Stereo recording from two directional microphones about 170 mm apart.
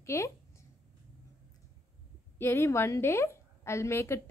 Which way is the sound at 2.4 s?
15° left (ahead or behind).